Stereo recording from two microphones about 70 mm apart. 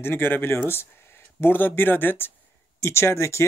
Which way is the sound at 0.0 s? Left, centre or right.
Left.